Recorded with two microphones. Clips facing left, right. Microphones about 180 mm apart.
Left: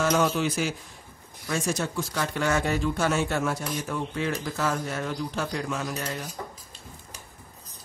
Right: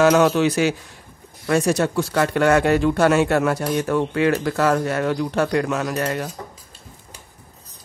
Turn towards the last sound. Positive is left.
turn(degrees=-65)  # may be behind; listen again after turning